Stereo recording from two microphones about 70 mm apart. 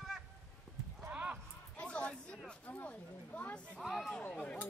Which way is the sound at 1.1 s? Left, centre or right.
Right.